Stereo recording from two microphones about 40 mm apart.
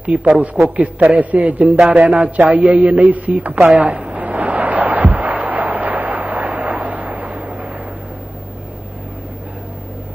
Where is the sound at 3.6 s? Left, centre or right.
Right.